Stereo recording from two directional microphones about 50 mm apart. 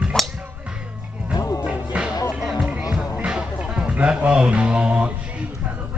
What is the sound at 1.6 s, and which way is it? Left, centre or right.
Music, right.